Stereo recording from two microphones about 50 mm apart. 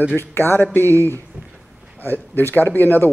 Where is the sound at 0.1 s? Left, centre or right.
Left.